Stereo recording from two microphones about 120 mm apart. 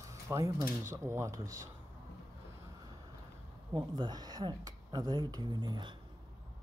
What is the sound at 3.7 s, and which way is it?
Speech, 35° right (ahead or behind).